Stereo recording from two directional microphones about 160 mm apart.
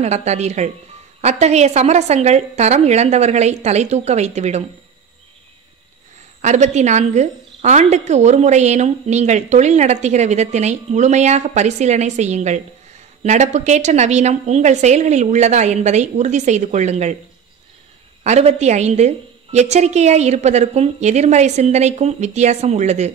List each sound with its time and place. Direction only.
0.0 s a woman's voice: 45° right (ahead or behind)
6.4 s a woman's voice: 45° right (ahead or behind)
18.2 s a woman's voice: 40° right (ahead or behind)